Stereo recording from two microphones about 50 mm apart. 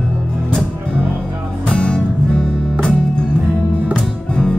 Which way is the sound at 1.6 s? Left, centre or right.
Centre.